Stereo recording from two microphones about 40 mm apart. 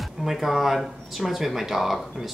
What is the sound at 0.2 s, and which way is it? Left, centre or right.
A woman's voice, centre.